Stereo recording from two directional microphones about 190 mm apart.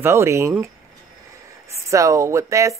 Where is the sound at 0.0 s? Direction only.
15° right (ahead or behind).